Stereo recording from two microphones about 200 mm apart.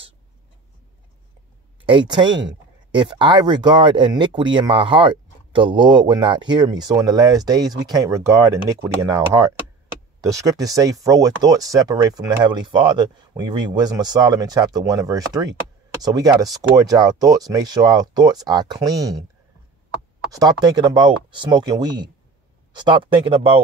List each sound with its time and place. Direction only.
1.9 s speech: 25° right (ahead or behind)
20.2 s speech: 20° right (ahead or behind)